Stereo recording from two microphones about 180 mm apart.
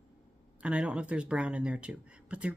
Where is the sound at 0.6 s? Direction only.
5° right (ahead or behind).